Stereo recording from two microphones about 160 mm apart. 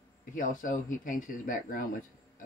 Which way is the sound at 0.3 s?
60° left (ahead or behind).